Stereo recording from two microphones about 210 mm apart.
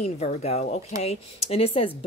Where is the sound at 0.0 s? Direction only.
30° left (ahead or behind).